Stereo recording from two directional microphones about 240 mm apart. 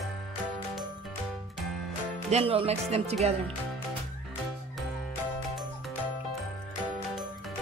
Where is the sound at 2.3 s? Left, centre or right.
Right.